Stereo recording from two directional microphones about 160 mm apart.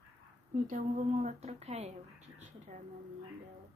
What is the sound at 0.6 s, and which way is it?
A woman's voice, 50° right (ahead or behind).